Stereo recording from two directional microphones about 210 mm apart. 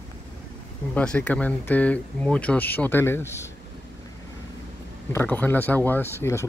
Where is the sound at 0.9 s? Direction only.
5° left (ahead or behind).